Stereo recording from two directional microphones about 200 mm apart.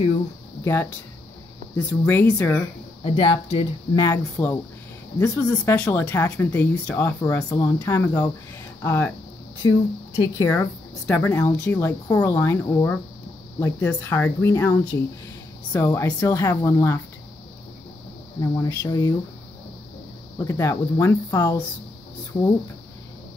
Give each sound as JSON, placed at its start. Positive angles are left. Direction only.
{"t": 1.9, "sound": "speech", "side_deg": 10}
{"t": 3.0, "sound": "speech", "side_deg": 25}
{"t": 4.0, "sound": "speech", "side_deg": 10}
{"t": 18.4, "sound": "speech", "side_deg": 15}
{"t": 20.4, "sound": "speech", "side_deg": 15}